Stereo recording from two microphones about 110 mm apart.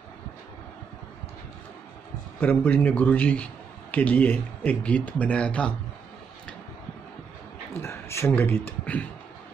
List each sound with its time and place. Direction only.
2.4 s speech: 15° left (ahead or behind)
7.8 s speech: 25° left (ahead or behind)